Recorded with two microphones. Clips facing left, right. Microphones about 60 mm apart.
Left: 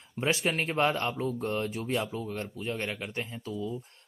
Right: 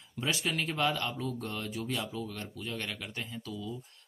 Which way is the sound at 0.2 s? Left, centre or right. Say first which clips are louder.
Left 4 dB; left.